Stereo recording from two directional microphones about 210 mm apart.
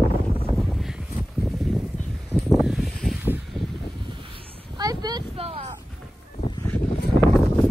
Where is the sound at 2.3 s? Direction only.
Centre (ahead or behind).